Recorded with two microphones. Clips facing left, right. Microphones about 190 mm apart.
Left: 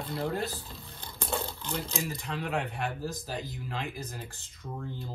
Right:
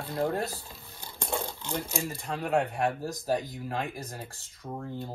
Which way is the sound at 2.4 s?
35° right (ahead or behind).